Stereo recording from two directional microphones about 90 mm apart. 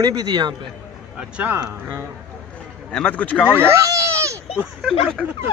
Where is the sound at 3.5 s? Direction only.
30° right (ahead or behind).